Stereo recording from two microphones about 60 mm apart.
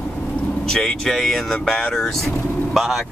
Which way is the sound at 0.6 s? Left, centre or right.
Centre.